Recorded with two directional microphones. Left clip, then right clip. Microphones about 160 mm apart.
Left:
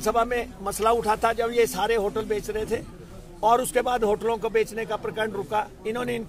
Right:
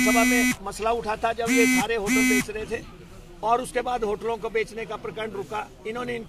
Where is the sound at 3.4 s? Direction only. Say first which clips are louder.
Left 3 dB; 25° left (ahead or behind).